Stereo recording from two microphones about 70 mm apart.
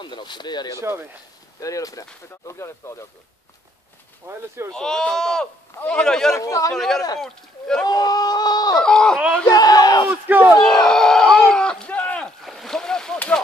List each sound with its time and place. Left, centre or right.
0.0 s speech: left
0.7 s speech: right
1.6 s speech: left
2.4 s speech: left
4.3 s speech: right
4.7 s speech: centre
6.3 s speech: left
6.7 s speech: centre
7.8 s speech: left
8.7 s speech: centre
9.5 s speech: left
10.0 s speech: right
10.6 s a sound: centre
12.4 s splash: centre